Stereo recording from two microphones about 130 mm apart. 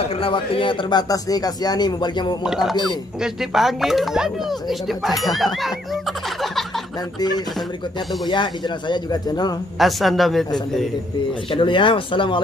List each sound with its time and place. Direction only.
0.2 s speech: 40° left (ahead or behind)
2.4 s speech: centre (ahead or behind)
7.2 s speech: 30° left (ahead or behind)
9.8 s speech: centre (ahead or behind)
11.5 s speech: 40° left (ahead or behind)